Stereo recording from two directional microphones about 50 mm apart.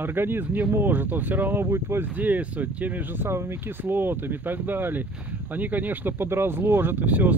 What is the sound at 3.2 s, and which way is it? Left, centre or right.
Speech, right.